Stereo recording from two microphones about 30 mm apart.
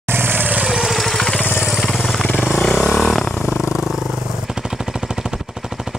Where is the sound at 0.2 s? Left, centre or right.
Right.